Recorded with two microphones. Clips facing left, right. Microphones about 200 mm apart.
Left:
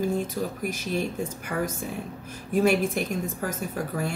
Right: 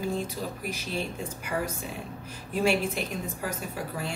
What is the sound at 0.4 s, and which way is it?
Speech, 55° left (ahead or behind).